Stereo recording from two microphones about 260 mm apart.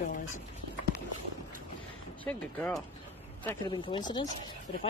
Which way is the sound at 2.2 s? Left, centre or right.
Centre.